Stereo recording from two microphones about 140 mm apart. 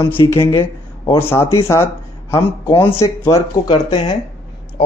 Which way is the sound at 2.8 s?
20° left (ahead or behind).